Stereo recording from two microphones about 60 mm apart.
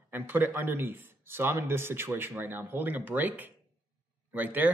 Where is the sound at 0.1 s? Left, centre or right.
Right.